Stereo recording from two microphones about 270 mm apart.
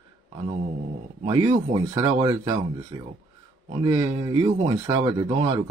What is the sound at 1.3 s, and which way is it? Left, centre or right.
Speech, centre.